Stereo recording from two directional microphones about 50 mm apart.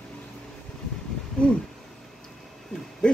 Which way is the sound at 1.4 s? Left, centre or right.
Left.